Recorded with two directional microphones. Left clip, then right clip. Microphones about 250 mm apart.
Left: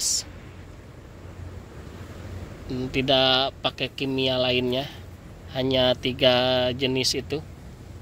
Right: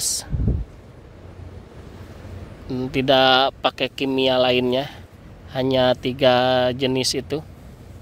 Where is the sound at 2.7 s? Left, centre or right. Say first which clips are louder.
Right 4 dB; right.